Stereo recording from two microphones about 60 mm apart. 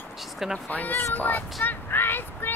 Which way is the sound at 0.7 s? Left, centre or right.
Left.